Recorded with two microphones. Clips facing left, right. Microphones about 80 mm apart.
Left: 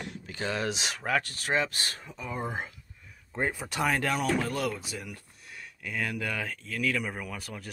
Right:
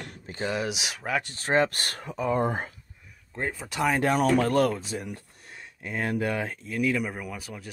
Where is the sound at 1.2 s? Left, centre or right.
Right.